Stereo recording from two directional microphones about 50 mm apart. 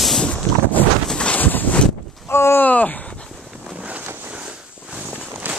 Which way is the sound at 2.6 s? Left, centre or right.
Left.